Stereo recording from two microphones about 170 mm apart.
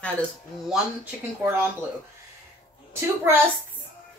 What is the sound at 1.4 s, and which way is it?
Speech, 15° right (ahead or behind).